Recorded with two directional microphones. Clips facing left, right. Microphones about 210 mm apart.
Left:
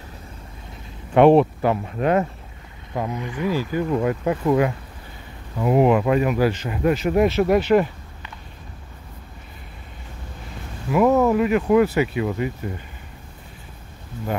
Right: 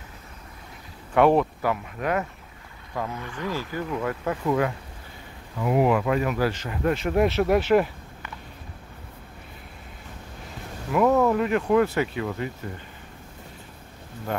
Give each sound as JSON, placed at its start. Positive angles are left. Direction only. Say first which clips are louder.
{"t": 1.1, "sound": "speech", "louder": "left 6 dB", "side_deg": 20}
{"t": 2.9, "sound": "speech", "louder": "left 5 dB", "side_deg": 20}
{"t": 3.9, "sound": "speech", "louder": "left 5 dB", "side_deg": 25}
{"t": 6.9, "sound": "speech", "louder": "left 4 dB", "side_deg": 5}
{"t": 10.9, "sound": "speech", "louder": "left 3 dB", "side_deg": 10}